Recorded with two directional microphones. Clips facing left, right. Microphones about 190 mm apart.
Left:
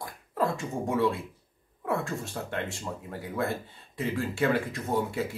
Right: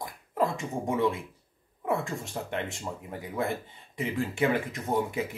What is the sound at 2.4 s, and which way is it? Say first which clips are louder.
Speech: even; 20° right (ahead or behind).